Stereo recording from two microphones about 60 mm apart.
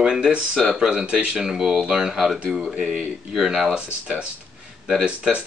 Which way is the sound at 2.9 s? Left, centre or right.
Centre.